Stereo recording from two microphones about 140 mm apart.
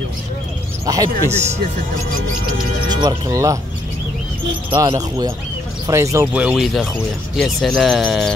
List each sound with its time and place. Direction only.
0.8 s speech: 25° right (ahead or behind)
1.3 s speech: 50° right (ahead or behind)
2.9 s speech: 30° right (ahead or behind)
4.7 s speech: 25° right (ahead or behind)
6.3 s speech: 5° right (ahead or behind)